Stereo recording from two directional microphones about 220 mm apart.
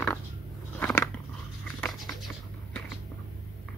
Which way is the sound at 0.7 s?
5° left (ahead or behind).